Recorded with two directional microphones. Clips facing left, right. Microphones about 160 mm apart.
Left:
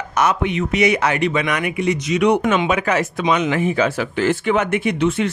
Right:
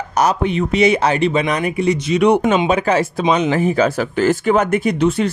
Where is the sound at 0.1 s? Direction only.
35° right (ahead or behind).